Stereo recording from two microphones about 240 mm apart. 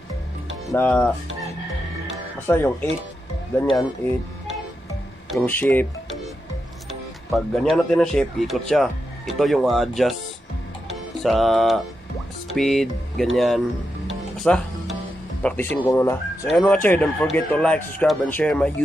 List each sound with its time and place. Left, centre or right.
0.7 s speech: centre
2.4 s speech: centre
5.3 s speech: centre
6.9 s music: centre
7.7 s speech: centre
10.9 s music: centre
12.4 s speech: centre
14.0 s music: centre
15.4 s speech: centre